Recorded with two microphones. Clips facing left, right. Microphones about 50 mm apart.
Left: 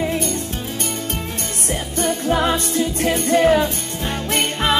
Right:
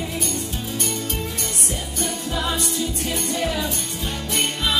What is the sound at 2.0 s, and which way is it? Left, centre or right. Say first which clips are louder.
Music: left 8 dB; left.